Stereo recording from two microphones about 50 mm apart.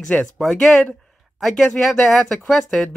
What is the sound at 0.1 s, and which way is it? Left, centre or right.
Speech, left.